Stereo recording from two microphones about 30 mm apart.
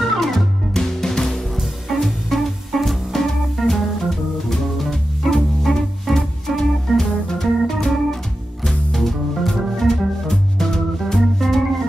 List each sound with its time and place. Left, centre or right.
0.7 s music: centre
1.6 s music: centre
6.0 s organ: centre
8.6 s music: centre